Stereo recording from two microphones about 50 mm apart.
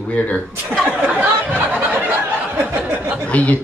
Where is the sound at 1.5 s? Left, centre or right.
Right.